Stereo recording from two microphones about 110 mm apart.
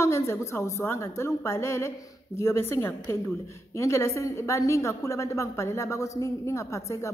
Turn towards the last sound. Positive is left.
turn(degrees=30)  # may be behind; listen again after turning